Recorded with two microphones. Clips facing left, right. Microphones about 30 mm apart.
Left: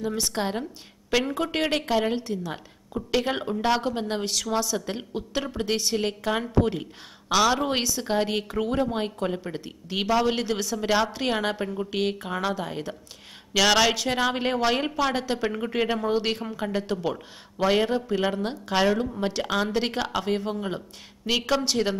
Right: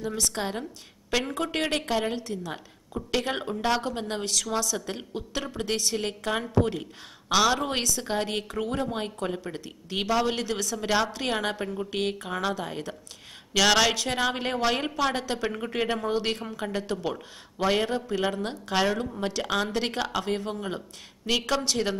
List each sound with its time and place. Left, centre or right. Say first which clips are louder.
0.3 s speech: left 3 dB; centre
1.1 s speech: left 3 dB; centre
2.1 s a woman's voice: left 3 dB; left
2.5 s speech: left 2 dB; centre
7.8 s speech: left 1 dB; centre
8.1 s speech: left 3 dB; centre
10.4 s speech: left 3 dB; centre